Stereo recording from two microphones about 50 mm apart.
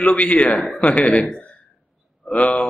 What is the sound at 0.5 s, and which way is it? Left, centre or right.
Speech, centre.